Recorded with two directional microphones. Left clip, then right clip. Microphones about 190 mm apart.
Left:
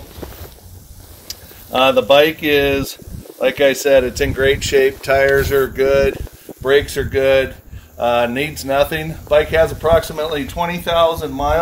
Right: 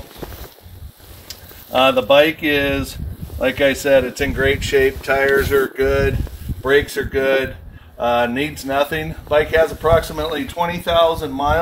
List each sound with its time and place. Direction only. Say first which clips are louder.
1.7 s speech: left 1 dB; 60° left (ahead or behind)
6.6 s speech: left 1 dB; 60° left (ahead or behind); by 11.6 s 30° left (ahead or behind)